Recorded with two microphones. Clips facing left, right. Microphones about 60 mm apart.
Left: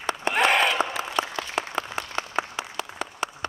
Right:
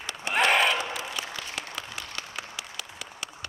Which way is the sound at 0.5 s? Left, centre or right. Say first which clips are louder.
Even; centre.